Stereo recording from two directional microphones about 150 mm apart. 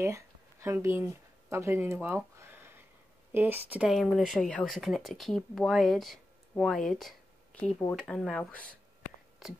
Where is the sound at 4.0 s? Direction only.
5° left (ahead or behind).